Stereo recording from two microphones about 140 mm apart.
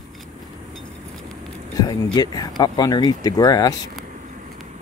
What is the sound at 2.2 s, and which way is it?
Speech, 30° left (ahead or behind).